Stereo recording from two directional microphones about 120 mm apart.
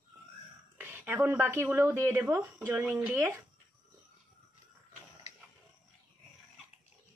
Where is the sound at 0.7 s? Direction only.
15° right (ahead or behind).